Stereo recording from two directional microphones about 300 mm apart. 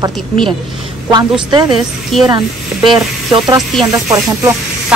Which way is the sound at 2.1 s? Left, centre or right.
Centre.